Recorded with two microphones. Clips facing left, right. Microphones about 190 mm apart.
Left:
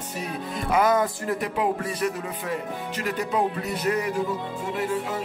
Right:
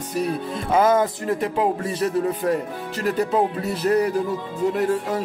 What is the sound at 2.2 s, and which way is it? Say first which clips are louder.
Speech: right 8 dB; 40° right (ahead or behind).